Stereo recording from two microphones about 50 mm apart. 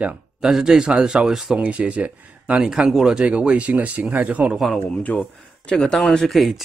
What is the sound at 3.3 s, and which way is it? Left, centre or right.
Speech, right.